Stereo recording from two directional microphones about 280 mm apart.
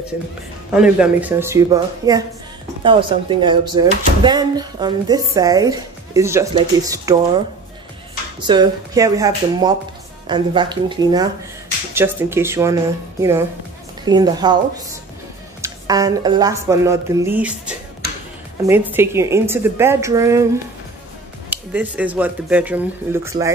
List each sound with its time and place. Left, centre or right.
0.7 s speech: centre
8.5 s speech: centre
14.0 s speech: centre
18.7 s speech: centre
21.5 s speech: centre